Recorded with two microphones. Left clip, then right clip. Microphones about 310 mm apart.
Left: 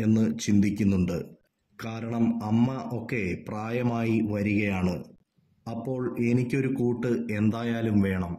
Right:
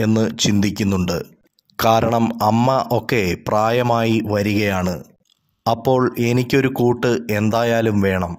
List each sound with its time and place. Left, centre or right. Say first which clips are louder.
0.0 s speech: right 9 dB; right